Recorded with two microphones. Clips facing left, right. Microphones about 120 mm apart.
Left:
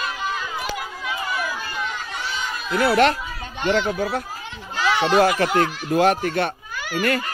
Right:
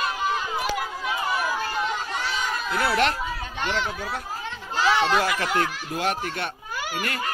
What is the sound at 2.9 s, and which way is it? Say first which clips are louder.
Speech: left 6 dB; 55° left (ahead or behind).